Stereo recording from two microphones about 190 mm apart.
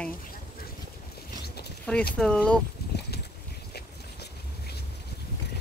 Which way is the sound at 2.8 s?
55° left (ahead or behind).